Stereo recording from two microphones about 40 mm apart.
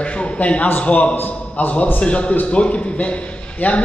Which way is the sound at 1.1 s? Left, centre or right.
Left.